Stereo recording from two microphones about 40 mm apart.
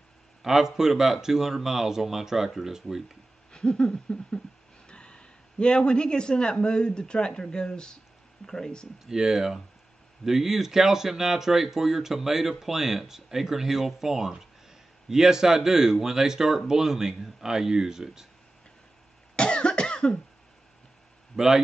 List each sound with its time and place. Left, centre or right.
0.4 s speech: centre
3.5 s a sound: left
4.8 s speech: left
9.0 s speech: centre
19.3 s cough: left
21.4 s speech: centre